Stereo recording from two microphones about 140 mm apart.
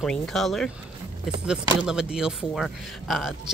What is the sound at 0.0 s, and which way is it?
Speech, 5° left (ahead or behind).